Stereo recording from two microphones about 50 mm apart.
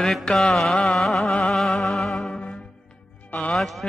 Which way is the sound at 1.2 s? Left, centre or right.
Left.